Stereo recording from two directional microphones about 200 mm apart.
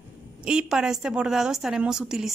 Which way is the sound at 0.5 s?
5° right (ahead or behind).